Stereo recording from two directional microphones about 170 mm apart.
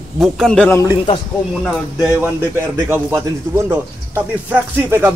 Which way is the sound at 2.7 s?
15° right (ahead or behind).